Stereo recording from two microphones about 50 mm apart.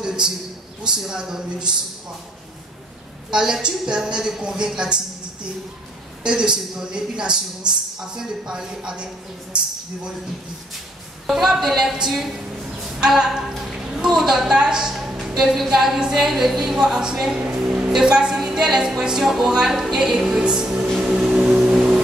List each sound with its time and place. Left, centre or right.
0.0 s a man's voice: centre
3.3 s a woman's voice: centre
6.2 s a woman's voice: centre
11.2 s a woman's voice: centre
13.0 s a sound: centre
16.1 s a woman's voice: centre
17.6 s music: right
17.9 s a woman's voice: centre
21.0 s vehicle: centre